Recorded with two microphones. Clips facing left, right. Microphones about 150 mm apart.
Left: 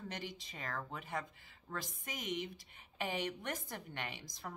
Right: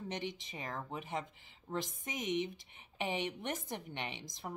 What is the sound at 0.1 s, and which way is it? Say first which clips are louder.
Speech: right 5 dB; 20° right (ahead or behind).